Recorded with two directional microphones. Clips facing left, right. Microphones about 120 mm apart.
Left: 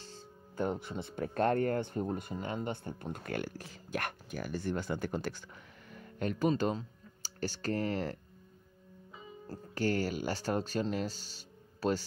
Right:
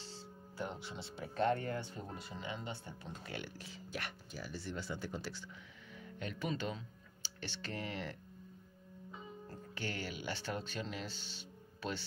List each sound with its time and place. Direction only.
0.0 s speech: 50° left (ahead or behind)
9.5 s speech: 40° left (ahead or behind)